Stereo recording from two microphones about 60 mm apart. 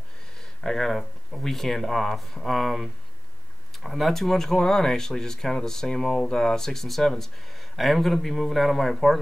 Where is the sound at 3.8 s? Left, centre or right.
Centre.